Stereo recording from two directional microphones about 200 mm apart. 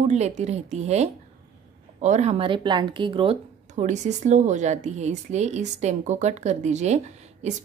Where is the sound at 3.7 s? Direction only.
35° right (ahead or behind).